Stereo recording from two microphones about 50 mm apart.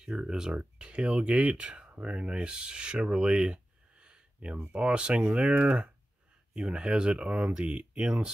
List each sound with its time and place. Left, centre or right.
0.0 s speech: centre
6.5 s speech: centre